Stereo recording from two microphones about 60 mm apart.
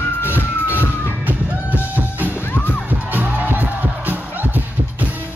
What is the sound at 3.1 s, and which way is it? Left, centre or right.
Music, right.